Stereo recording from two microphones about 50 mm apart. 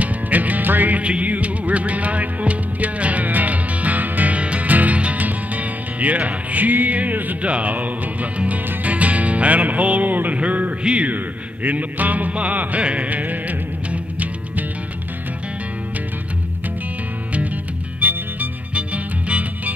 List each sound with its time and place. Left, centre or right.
0.0 s music: right
11.6 s music: right
18.0 s music: right